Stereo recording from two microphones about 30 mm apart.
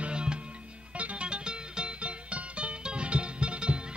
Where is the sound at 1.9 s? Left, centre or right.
Right.